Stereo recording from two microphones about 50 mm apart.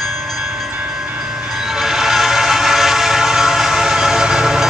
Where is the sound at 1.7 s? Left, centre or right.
Centre.